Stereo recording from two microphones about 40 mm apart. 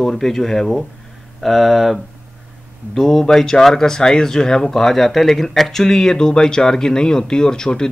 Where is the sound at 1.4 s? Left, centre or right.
Centre.